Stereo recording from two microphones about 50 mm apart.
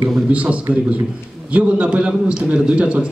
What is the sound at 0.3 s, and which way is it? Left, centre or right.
A man's voice, right.